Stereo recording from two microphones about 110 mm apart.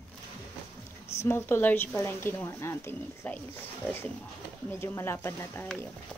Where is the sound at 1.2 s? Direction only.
20° left (ahead or behind).